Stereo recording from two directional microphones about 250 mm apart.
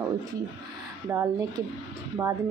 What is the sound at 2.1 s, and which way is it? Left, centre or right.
Speech, centre.